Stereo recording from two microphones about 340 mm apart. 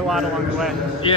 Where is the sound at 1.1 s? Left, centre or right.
Centre.